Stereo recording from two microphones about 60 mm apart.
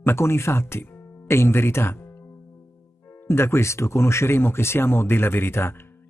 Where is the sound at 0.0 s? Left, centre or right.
Left.